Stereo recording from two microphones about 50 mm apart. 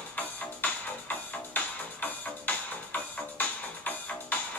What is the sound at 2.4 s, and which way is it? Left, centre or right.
Music, left.